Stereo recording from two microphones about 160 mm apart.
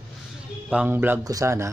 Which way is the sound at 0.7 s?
10° right (ahead or behind).